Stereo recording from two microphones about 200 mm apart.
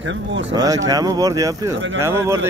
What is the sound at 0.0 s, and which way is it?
Speech, 65° right (ahead or behind).